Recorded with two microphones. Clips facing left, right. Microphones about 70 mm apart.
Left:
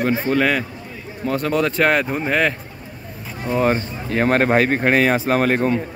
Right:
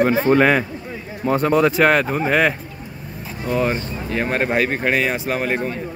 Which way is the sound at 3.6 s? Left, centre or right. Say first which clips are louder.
Left 4 dB; left.